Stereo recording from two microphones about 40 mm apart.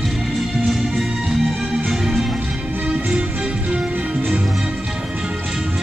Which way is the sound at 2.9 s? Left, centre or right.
Right.